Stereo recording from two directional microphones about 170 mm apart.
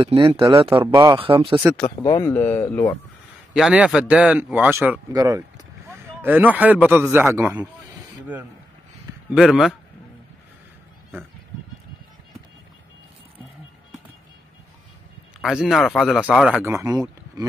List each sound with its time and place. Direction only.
0.0 s speech: 30° right (ahead or behind)
2.2 s speech: 15° left (ahead or behind)
3.5 s a man's voice: 5° right (ahead or behind)
9.3 s speech: centre (ahead or behind)
15.4 s speech: centre (ahead or behind); by 17.0 s 15° right (ahead or behind)